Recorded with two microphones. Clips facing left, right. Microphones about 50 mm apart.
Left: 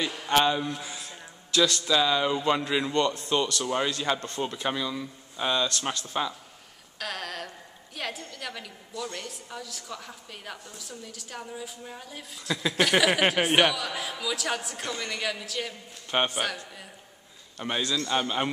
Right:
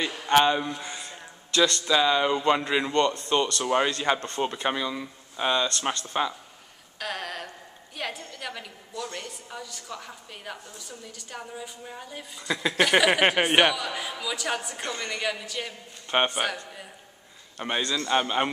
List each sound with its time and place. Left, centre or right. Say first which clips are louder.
0.0 s a man's voice: right 3 dB; centre
2.9 s a woman's voice: right 3 dB; centre
3.5 s a woman's voice: right 3 dB; right; by 16.5 s centre
17.6 s speech: right 1 dB; centre